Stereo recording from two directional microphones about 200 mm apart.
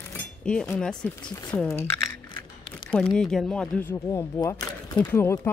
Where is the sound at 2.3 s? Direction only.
25° left (ahead or behind).